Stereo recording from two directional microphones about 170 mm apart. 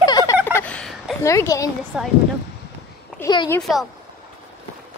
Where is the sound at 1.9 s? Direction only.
5° right (ahead or behind).